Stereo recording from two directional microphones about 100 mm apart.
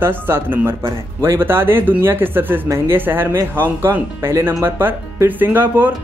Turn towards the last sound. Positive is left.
turn(degrees=-20)  # may be behind; listen again after turning